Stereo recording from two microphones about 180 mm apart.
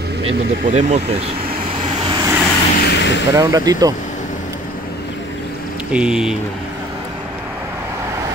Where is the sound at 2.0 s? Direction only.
25° right (ahead or behind).